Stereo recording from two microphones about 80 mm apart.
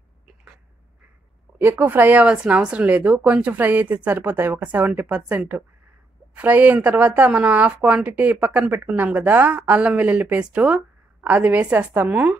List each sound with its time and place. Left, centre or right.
1.6 s speech: right